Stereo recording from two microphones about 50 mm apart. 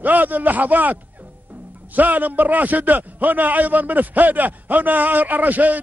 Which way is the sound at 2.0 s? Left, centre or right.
Right.